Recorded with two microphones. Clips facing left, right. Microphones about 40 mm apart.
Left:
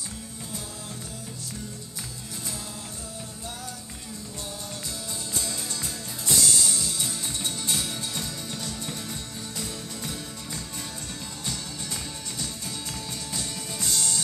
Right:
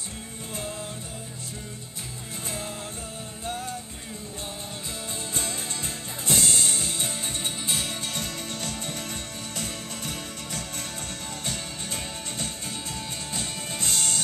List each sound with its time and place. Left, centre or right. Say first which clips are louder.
5.3 s music: even; right